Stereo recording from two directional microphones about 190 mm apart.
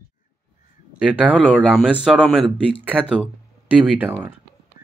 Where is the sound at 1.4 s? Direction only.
5° left (ahead or behind).